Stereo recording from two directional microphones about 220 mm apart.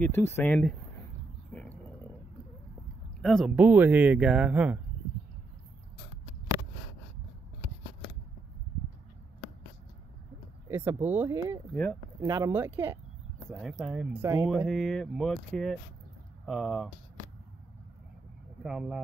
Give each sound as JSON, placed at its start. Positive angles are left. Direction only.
{"t": 0.0, "sound": "speech", "side_deg": 10}
{"t": 1.5, "sound": "a sound", "side_deg": 5}
{"t": 3.2, "sound": "speech", "side_deg": 0}
{"t": 10.7, "sound": "speech", "side_deg": -10}
{"t": 11.7, "sound": "speech", "side_deg": 5}
{"t": 12.2, "sound": "speech", "side_deg": -15}
{"t": 13.6, "sound": "speech", "side_deg": 0}
{"t": 14.5, "sound": "speech", "side_deg": 0}
{"t": 18.6, "sound": "speech", "side_deg": -5}